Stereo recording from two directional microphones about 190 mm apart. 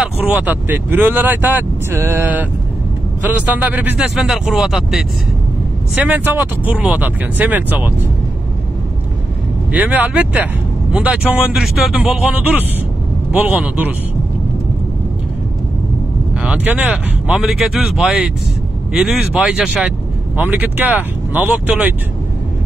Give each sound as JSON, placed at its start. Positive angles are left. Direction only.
{"t": 0.0, "sound": "speech", "side_deg": -5}
{"t": 6.0, "sound": "speech", "side_deg": -10}
{"t": 9.7, "sound": "speech", "side_deg": -10}
{"t": 16.3, "sound": "speech", "side_deg": -5}